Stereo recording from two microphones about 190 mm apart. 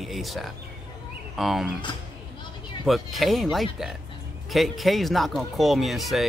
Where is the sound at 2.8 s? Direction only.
Centre (ahead or behind).